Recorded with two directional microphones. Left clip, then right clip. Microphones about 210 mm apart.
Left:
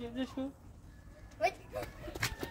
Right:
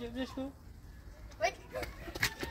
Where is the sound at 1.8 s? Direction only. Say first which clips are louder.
Right 4 dB; 15° right (ahead or behind).